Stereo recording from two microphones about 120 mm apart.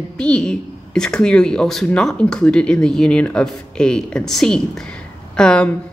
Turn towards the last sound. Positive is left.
turn(degrees=10)  # may be behind; listen again after turning